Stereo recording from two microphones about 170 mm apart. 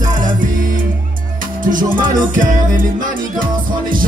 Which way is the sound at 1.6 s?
50° right (ahead or behind).